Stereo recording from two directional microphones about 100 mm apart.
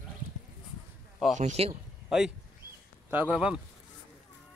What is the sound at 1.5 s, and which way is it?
Speech, 90° right.